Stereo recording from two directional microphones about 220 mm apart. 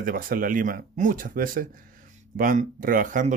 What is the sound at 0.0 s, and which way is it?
Speech, 40° right (ahead or behind).